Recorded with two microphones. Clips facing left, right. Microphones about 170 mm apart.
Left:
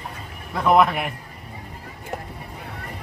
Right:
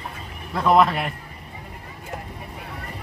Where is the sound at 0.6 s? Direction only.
10° left (ahead or behind).